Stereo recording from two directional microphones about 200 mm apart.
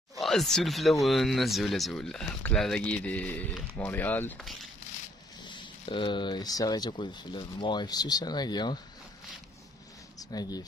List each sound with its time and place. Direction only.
0.2 s speech: centre (ahead or behind)
5.4 s speech: 25° left (ahead or behind)
10.3 s speech: 20° left (ahead or behind)